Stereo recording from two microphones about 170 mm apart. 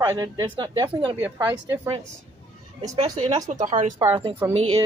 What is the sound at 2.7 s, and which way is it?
A woman's voice, 35° right (ahead or behind).